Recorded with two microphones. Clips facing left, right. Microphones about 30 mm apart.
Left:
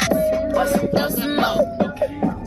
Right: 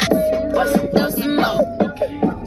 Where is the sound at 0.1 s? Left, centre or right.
Centre.